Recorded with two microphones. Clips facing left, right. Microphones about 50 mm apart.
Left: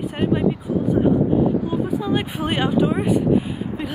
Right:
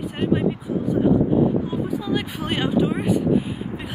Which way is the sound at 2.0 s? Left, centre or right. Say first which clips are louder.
Left 3 dB; left.